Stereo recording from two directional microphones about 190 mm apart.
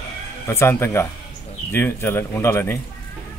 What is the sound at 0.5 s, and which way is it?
Speech, 15° left (ahead or behind).